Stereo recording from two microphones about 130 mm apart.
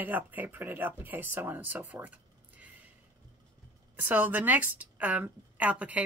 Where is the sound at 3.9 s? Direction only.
15° right (ahead or behind).